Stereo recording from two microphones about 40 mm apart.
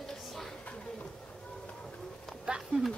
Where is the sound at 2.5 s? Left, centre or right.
Right.